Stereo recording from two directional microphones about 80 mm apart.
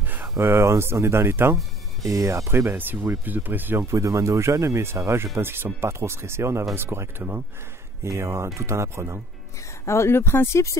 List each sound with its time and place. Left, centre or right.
0.0 s a sound: right
0.4 s speech: right
9.8 s speech: left